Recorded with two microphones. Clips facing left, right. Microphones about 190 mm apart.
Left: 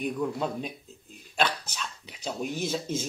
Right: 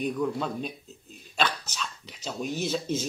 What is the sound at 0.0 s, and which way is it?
Speech, 5° left (ahead or behind).